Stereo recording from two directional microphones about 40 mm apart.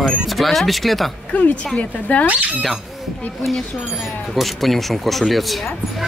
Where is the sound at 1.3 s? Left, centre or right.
Left.